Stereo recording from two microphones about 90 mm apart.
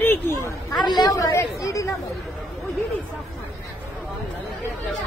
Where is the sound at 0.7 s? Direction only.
50° left (ahead or behind).